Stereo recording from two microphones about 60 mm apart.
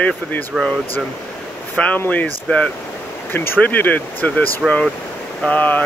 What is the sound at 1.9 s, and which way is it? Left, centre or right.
Speech, left.